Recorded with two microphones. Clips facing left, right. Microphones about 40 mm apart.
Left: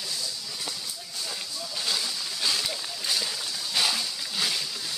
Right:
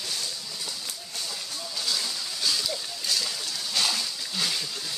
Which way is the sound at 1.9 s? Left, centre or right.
Left.